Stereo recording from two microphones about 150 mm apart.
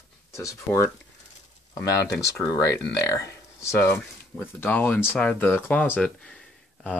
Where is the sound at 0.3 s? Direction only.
20° left (ahead or behind).